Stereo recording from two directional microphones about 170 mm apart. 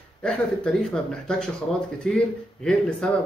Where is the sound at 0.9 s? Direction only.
5° left (ahead or behind).